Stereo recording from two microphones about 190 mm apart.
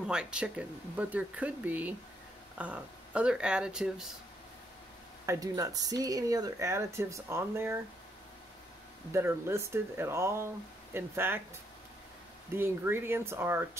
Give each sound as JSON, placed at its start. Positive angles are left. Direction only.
{"t": 0.1, "sound": "speech", "side_deg": -5}
{"t": 5.2, "sound": "speech", "side_deg": -15}
{"t": 9.1, "sound": "speech", "side_deg": -15}
{"t": 12.5, "sound": "speech", "side_deg": -10}